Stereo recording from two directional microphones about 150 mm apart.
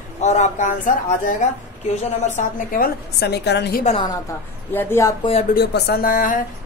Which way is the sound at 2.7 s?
85° left.